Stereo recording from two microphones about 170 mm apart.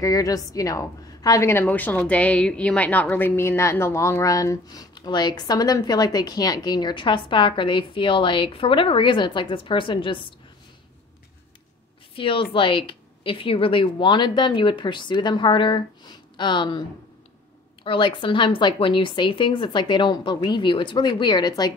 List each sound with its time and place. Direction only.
0.0 s a woman's voice: 20° left (ahead or behind)
12.2 s a woman's voice: 30° left (ahead or behind)
17.8 s a woman's voice: 30° left (ahead or behind)